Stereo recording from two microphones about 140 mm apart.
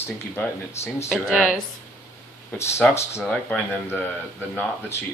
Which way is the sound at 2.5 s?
20° left (ahead or behind).